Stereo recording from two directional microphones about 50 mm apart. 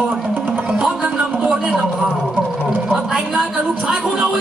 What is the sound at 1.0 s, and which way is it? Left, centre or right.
Speech, right.